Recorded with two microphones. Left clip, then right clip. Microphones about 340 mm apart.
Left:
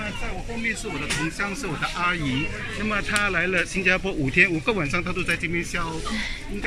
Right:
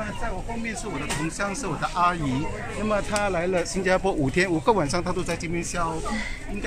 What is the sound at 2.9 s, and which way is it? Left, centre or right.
Speech, centre.